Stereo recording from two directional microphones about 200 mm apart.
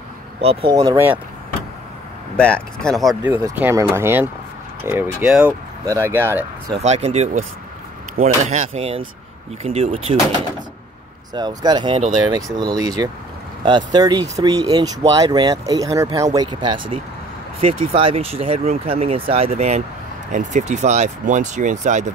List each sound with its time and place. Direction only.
0.4 s speech: 30° right (ahead or behind)
2.3 s speech: 5° left (ahead or behind)
3.4 s speech: 15° right (ahead or behind)
6.8 s speech: 35° right (ahead or behind)
11.3 s speech: 20° right (ahead or behind); by 22.1 s 40° right (ahead or behind)